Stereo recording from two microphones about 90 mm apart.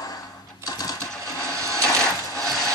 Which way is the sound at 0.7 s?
40° left (ahead or behind).